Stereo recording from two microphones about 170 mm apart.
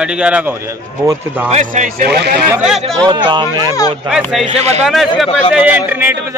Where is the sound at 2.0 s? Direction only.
75° right (ahead or behind).